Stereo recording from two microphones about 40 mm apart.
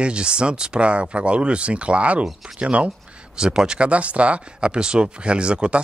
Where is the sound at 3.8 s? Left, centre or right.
Right.